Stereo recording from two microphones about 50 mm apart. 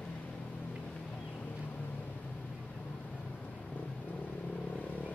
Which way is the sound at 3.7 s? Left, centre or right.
Left.